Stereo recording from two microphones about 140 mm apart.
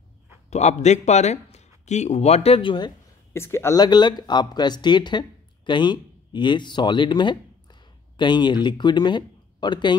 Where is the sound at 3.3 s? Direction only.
20° left (ahead or behind).